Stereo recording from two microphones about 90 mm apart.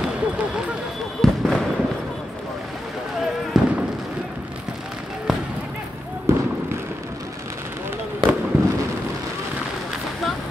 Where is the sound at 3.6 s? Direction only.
5° right (ahead or behind).